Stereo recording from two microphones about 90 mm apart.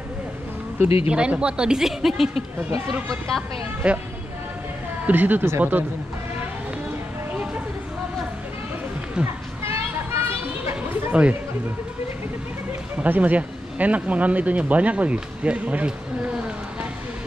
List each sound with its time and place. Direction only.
1.0 s speech: 15° right (ahead or behind); by 3.4 s centre (ahead or behind)
3.8 s speech: 15° right (ahead or behind)
5.0 s speech: 20° right (ahead or behind)
9.2 s children playing: 25° right (ahead or behind)
10.7 s chatter: 20° right (ahead or behind)
13.0 s speech: 15° right (ahead or behind)